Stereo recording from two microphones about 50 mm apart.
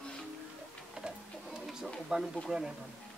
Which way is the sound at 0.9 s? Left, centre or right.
Centre.